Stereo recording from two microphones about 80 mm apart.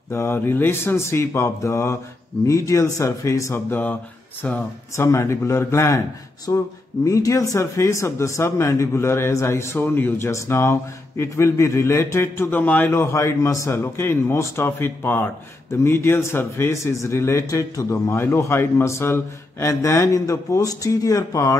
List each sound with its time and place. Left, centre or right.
0.1 s speech: left
3.7 s speech: left
4.9 s speech: left
12.9 s speech: left
18.1 s speech: left